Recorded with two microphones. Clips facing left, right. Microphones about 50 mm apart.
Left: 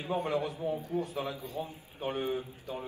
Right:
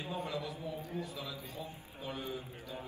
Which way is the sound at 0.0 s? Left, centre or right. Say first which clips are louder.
Left 7 dB; left.